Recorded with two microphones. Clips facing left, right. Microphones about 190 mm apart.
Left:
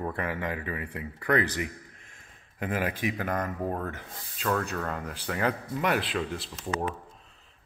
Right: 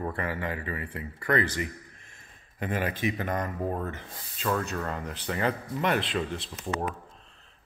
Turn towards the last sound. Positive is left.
turn(degrees=0)  # may be behind; listen again after turning